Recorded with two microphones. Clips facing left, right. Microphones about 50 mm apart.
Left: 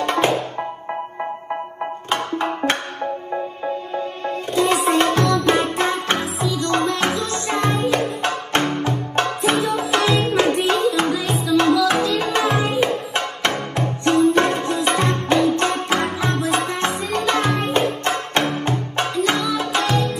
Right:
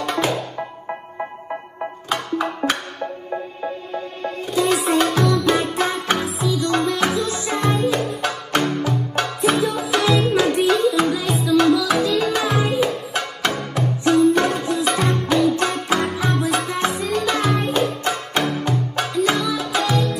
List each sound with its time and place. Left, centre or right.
0.0 s music: left
2.0 s music: left
4.5 s music: left
11.4 s music: left